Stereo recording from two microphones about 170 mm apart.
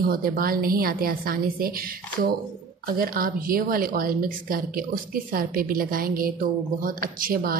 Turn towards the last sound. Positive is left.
turn(degrees=-55)  # may be behind; listen again after turning